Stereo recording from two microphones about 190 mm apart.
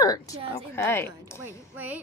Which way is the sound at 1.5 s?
10° right (ahead or behind).